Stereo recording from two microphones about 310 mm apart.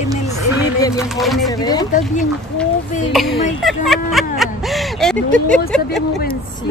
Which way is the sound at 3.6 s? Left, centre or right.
Centre.